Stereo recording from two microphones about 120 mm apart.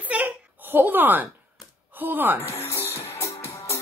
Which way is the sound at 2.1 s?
15° right (ahead or behind).